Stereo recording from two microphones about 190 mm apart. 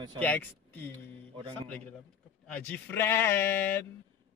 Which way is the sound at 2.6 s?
10° left (ahead or behind).